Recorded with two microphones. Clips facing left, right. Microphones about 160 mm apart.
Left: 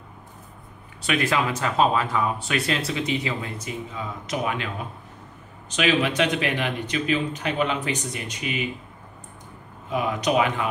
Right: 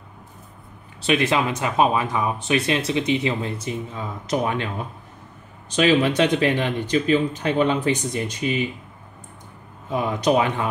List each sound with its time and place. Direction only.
1.0 s speech: 25° right (ahead or behind)
5.8 s speech: 30° right (ahead or behind)
9.8 s speech: 30° right (ahead or behind)